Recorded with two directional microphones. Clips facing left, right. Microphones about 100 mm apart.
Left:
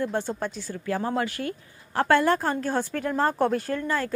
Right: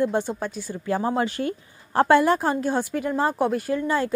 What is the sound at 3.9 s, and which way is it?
Speech, 15° right (ahead or behind).